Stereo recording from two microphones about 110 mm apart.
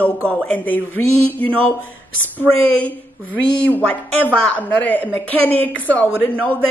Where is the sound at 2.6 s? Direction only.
15° left (ahead or behind).